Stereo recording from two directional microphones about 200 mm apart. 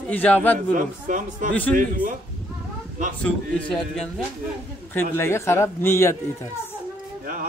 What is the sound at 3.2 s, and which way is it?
Speech, 5° left (ahead or behind).